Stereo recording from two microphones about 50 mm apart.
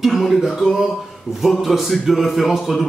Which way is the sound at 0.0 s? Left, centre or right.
Centre.